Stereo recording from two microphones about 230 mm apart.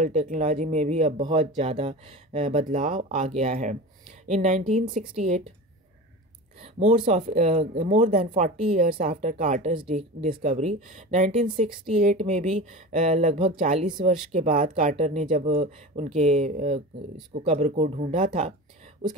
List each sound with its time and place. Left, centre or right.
0.0 s speech: right
6.6 s speech: right